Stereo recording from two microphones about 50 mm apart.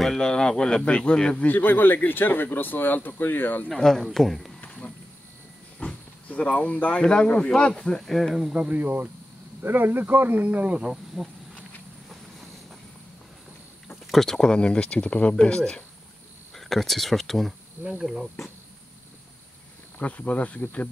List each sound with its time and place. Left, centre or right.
0.0 s speech: centre
1.5 s speech: left
3.6 s speech: centre
5.8 s roaring cats: left
7.1 s speech: centre
8.0 s speech: centre
8.5 s speech: right
10.8 s cricket: centre
14.1 s speech: centre
16.5 s speech: centre
20.0 s speech: left